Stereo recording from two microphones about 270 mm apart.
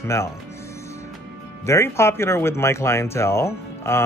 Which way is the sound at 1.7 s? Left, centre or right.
Centre.